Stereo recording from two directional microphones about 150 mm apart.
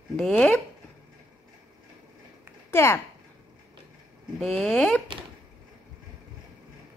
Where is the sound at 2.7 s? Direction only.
15° left (ahead or behind).